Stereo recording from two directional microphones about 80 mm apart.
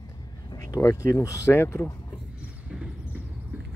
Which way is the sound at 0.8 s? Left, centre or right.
Left.